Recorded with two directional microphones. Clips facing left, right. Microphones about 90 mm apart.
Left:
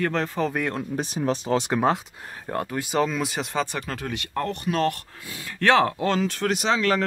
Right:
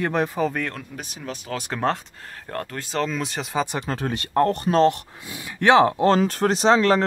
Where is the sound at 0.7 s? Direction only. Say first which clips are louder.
Left 8 dB; 25° left (ahead or behind).